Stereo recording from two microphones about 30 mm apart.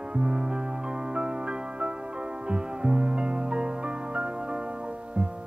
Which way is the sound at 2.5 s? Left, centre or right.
Right.